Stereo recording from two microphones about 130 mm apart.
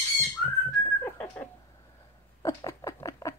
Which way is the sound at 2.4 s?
25° left (ahead or behind).